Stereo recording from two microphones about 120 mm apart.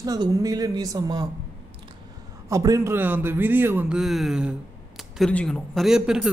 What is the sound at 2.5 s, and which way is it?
A man's voice, 25° right (ahead or behind).